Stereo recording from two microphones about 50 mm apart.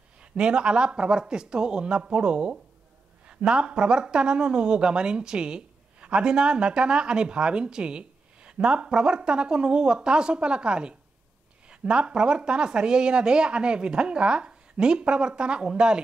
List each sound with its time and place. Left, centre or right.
0.2 s speech: centre